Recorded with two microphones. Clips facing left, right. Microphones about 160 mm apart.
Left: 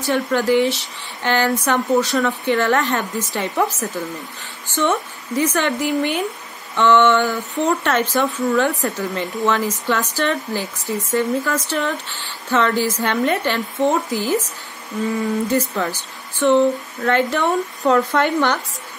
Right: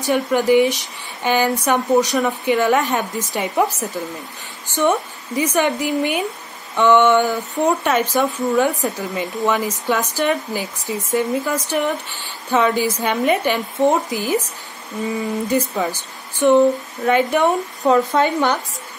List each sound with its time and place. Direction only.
0.0 s speech: 15° right (ahead or behind)